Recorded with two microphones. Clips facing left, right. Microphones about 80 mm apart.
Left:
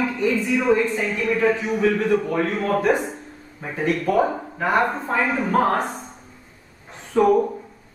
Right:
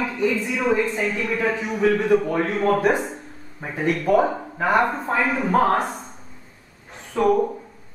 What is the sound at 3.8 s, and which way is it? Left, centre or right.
A man's voice, centre.